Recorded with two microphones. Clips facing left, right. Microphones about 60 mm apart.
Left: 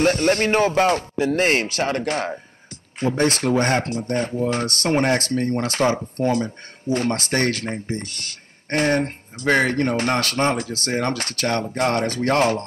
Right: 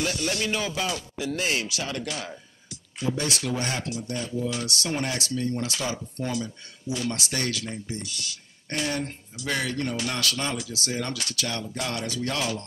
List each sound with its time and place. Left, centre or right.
0.0 s speech: left